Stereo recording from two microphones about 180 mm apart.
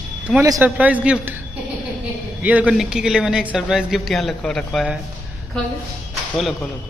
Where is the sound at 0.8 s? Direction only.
5° right (ahead or behind).